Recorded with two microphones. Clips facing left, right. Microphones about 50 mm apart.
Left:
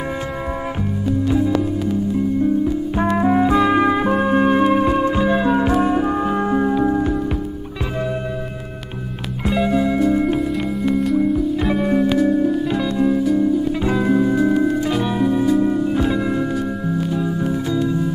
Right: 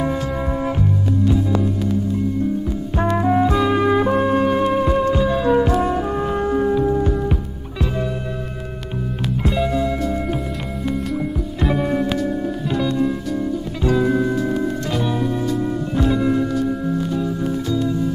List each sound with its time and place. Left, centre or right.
3.0 s music: centre
9.5 s music: centre
11.1 s music: centre